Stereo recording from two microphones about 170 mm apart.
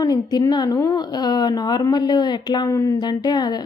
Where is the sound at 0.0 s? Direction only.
25° left (ahead or behind).